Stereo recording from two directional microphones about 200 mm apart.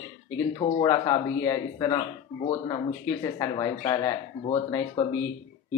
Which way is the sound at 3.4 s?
20° left (ahead or behind).